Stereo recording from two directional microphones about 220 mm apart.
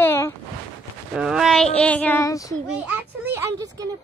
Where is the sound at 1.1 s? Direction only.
Centre (ahead or behind); by 2.6 s 15° left (ahead or behind).